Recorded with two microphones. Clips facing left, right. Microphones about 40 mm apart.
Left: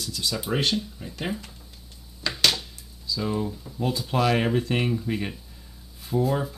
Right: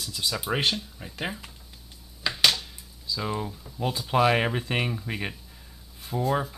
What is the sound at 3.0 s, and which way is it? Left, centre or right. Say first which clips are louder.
Speech: left 3 dB; centre.